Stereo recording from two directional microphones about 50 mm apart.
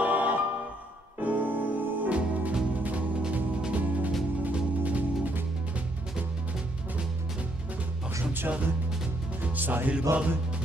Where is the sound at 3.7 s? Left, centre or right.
Right.